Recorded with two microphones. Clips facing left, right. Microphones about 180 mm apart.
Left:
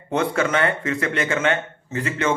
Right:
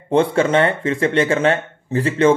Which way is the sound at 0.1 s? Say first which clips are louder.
Right 6 dB; 30° right (ahead or behind).